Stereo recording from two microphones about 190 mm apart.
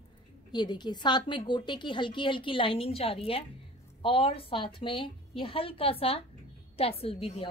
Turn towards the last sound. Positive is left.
turn(degrees=30)  # may be behind; listen again after turning